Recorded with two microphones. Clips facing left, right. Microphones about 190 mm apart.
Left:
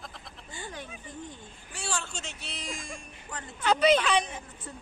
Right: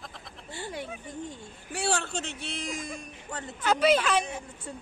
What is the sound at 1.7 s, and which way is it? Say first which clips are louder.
Speech: right 7 dB; 65° right (ahead or behind).